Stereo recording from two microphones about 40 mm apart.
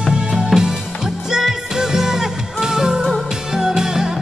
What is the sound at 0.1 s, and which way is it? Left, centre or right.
Music, right.